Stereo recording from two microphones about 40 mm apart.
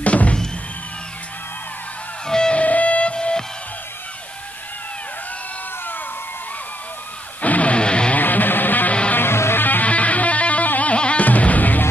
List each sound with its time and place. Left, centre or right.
0.0 s music: left
2.2 s music: centre
2.5 s music: left
7.4 s music: left
8.2 s music: left
9.1 s music: left
9.6 s music: left
9.8 s music: left
11.2 s music: left